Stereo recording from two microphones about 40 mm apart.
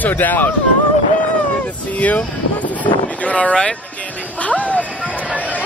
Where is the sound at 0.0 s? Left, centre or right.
Left.